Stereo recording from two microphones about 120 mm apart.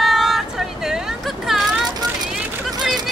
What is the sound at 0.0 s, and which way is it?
Vehicle, centre (ahead or behind).